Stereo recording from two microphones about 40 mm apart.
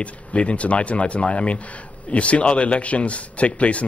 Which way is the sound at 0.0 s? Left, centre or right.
Left.